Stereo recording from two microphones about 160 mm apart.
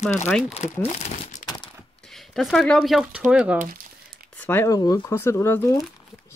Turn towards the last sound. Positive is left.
turn(degrees=15)  # may be behind; listen again after turning